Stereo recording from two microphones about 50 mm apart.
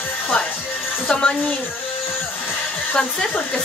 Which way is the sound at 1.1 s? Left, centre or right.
Left.